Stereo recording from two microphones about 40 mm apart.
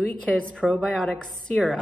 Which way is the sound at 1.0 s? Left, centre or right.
Left.